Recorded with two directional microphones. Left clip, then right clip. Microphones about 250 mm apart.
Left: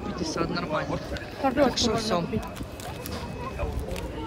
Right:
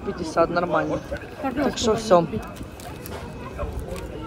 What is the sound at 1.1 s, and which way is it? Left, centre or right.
Speech, right.